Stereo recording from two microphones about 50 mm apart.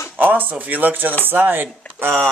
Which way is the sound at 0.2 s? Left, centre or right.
Right.